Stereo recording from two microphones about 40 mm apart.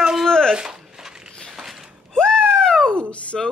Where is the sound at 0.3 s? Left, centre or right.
Centre.